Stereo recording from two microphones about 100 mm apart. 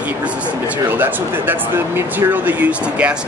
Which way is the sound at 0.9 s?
20° right (ahead or behind).